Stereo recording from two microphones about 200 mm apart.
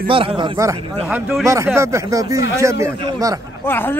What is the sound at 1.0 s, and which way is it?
Speech, 5° right (ahead or behind).